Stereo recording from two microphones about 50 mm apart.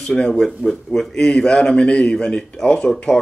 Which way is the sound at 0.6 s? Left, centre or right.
Centre.